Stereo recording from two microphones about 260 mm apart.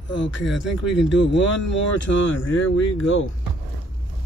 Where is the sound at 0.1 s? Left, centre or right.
Left.